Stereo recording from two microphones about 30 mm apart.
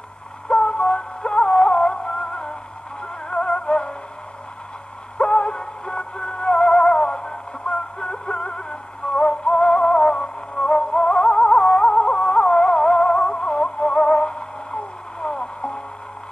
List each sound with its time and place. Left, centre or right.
0.5 s music: left
5.1 s music: left